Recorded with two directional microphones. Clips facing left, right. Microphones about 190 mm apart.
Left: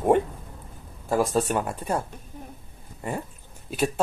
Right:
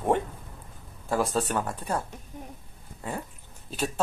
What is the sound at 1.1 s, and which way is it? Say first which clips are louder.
Speech: left 3 dB; 10° left (ahead or behind).